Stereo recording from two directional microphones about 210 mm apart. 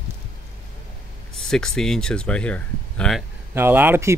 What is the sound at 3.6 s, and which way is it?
Speech, 10° right (ahead or behind).